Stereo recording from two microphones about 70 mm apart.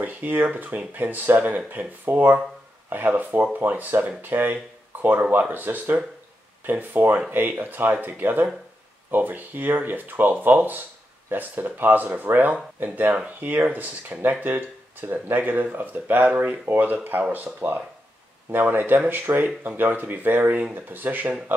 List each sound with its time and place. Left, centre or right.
0.0 s speech: right